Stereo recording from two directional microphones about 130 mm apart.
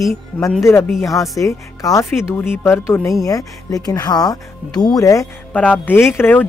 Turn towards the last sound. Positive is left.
turn(degrees=15)  # may be behind; listen again after turning